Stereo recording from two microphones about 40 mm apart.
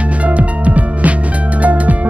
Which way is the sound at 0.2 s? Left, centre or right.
Right.